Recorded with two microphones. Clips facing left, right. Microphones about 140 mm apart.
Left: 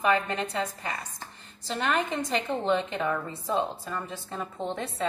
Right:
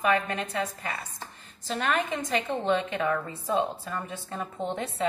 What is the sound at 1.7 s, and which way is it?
A woman's voice, centre (ahead or behind).